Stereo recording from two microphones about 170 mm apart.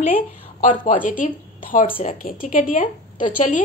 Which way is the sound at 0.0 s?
45° left (ahead or behind).